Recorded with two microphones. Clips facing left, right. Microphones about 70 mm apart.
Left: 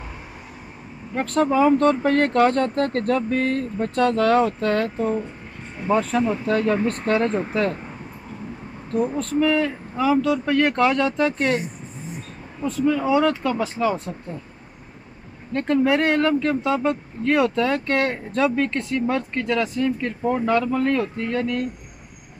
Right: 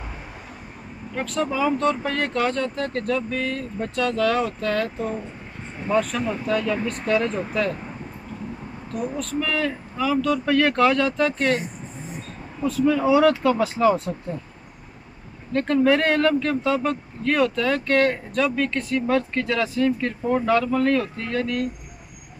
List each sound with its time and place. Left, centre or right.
1.1 s speech: left
5.9 s speech: left
9.4 s speech: left
12.6 s speech: centre
15.5 s speech: centre
19.0 s speech: centre